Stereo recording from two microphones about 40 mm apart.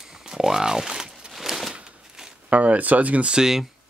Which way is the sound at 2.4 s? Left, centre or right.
Right.